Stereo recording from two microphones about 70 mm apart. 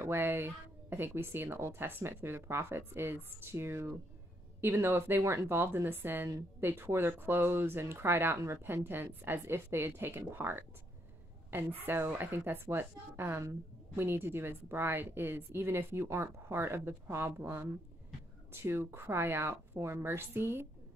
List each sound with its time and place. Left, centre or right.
0.0 s speech: right